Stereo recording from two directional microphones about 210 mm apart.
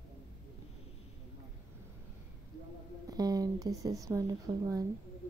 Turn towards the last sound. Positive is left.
turn(degrees=-10)  # may be behind; listen again after turning